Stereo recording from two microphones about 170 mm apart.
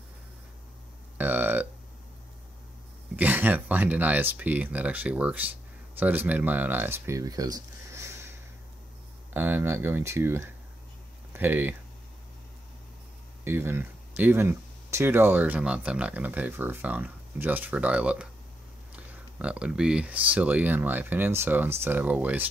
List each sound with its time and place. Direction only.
1.1 s a sound: 10° right (ahead or behind)
3.2 s speech: 10° right (ahead or behind)
13.4 s speech: 15° right (ahead or behind)